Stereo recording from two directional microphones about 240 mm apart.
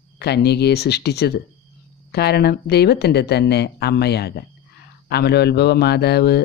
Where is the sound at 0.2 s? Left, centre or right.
Left.